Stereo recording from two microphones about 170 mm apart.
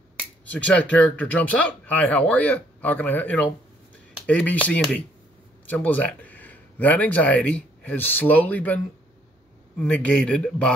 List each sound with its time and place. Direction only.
0.2 s speech: 10° left (ahead or behind)